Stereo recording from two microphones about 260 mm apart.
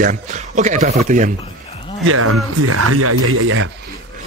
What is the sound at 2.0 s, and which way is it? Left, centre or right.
Speech, right.